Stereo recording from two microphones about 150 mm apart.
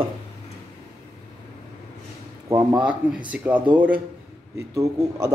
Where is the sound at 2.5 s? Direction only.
20° right (ahead or behind).